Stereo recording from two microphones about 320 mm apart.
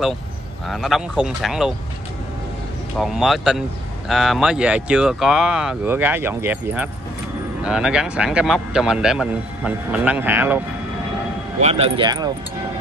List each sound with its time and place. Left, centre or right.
0.7 s speech: centre
3.0 s speech: centre
11.6 s speech: centre